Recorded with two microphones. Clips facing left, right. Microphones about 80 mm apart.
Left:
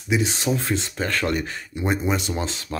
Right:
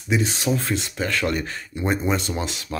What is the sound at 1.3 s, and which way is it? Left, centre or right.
Speech, centre.